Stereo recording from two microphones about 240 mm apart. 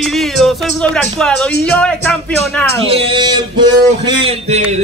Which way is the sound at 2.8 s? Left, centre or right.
Right.